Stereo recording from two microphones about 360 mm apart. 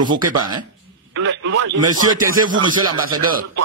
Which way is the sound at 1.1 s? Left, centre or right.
Right.